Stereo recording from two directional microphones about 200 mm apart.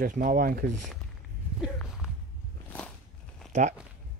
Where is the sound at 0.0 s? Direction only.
40° right (ahead or behind).